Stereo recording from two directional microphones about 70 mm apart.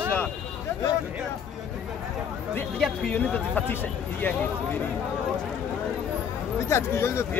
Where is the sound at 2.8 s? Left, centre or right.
Centre.